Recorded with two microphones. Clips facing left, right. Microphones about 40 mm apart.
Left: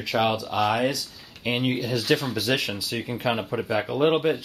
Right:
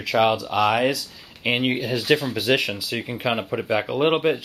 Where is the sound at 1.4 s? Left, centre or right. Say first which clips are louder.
Right 3 dB; right.